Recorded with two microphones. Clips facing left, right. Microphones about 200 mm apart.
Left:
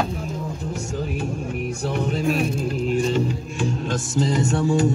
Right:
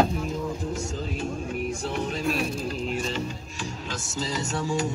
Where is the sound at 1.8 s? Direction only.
55° left (ahead or behind).